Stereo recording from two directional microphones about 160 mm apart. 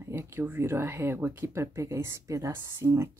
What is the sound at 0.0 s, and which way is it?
Speech, 15° right (ahead or behind).